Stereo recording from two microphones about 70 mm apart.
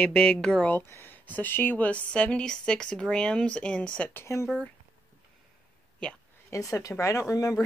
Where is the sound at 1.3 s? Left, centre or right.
Left.